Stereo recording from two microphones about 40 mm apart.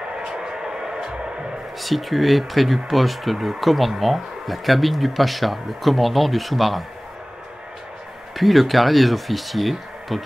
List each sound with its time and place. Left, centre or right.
0.2 s a sound: centre
1.8 s speech: centre
8.4 s speech: centre